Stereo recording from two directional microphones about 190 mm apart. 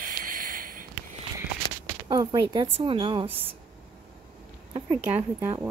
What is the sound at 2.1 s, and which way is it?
A woman's voice, 20° right (ahead or behind).